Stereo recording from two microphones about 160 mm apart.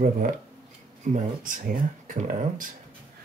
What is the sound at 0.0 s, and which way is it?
Speech, 60° right (ahead or behind).